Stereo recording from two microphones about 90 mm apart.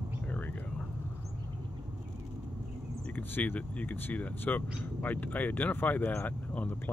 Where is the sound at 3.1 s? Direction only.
20° left (ahead or behind).